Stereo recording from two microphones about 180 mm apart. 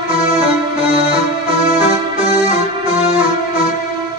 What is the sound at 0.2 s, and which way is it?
Music, 30° right (ahead or behind).